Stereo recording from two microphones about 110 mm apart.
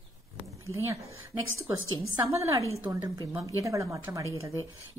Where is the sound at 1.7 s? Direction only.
25° right (ahead or behind).